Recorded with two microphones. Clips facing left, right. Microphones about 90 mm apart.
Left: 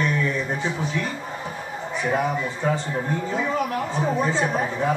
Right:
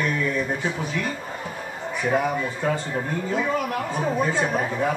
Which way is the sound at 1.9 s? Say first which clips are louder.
Right 1 dB; 20° left (ahead or behind).